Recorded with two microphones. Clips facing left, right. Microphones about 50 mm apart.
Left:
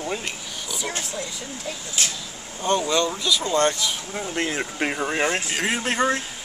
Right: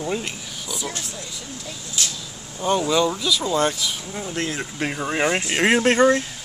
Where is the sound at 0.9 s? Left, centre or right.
Left.